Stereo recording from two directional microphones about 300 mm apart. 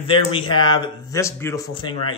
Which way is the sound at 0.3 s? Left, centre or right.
Centre.